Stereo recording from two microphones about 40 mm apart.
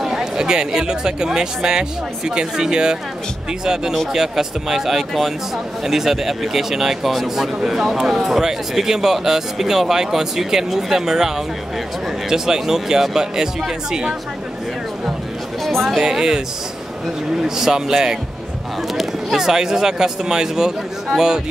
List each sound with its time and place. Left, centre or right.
0.0 s chatter: centre
0.7 s speech: centre
15.6 s a sound: centre
16.0 s speech: centre